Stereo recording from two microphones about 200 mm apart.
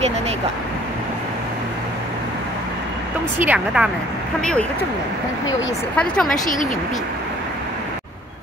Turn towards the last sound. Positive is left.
turn(degrees=40)  # may be behind; listen again after turning